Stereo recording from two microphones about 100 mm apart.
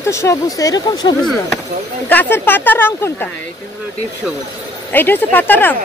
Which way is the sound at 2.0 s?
20° left (ahead or behind).